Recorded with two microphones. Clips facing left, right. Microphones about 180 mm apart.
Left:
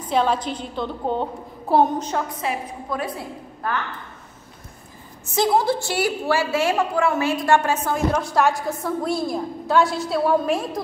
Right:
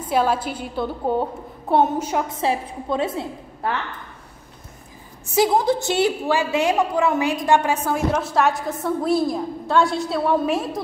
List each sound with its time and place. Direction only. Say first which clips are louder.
0.0 s a woman's voice: right 1 dB; 5° right (ahead or behind)
2.2 s a woman's voice: right 4 dB; 30° right (ahead or behind)
5.3 s a woman's voice: right 1 dB; 15° right (ahead or behind)